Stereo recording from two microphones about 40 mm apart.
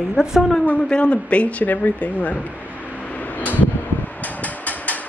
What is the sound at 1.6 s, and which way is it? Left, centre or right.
Speech, left.